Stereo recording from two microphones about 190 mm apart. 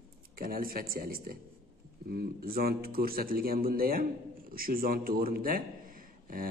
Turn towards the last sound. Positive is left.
turn(degrees=-50)  # may be behind; listen again after turning